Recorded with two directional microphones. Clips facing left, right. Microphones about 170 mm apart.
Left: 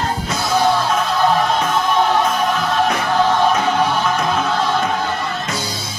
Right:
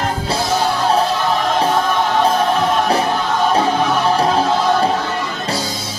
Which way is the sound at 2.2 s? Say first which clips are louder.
Right 3 dB; 30° right (ahead or behind).